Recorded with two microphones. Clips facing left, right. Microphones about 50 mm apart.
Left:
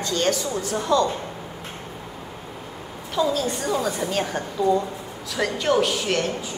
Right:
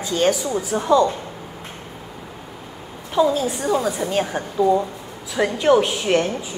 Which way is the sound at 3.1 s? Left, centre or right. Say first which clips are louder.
Right 4 dB; centre.